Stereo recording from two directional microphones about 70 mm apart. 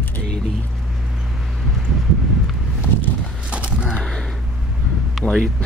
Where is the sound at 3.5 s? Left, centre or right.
Centre.